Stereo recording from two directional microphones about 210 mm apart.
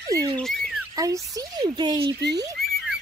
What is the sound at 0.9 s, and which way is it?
Speech, 15° right (ahead or behind).